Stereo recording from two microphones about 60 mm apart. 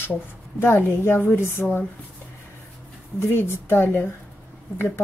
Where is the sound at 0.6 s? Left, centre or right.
Left.